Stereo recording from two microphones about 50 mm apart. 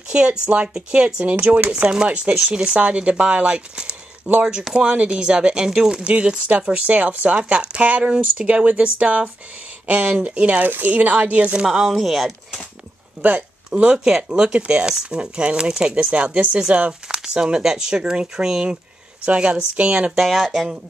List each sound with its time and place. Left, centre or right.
0.1 s speech: right
10.6 s speech: right
11.6 s speech: centre
13.7 s speech: centre
16.0 s speech: right
20.2 s speech: centre